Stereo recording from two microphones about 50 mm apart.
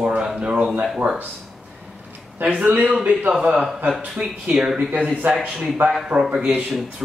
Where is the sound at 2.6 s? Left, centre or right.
Right.